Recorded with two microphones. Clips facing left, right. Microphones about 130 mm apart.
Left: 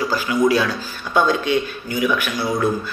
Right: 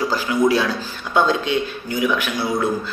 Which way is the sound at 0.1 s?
25° right (ahead or behind).